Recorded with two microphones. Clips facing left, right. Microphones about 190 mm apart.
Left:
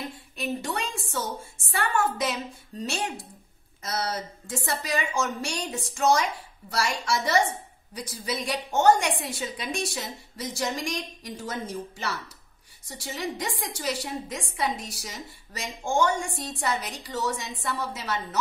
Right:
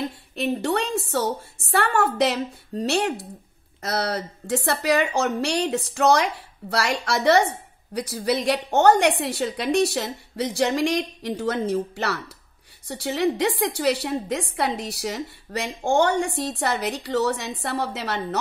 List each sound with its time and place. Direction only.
0.4 s a woman's voice: 60° right (ahead or behind)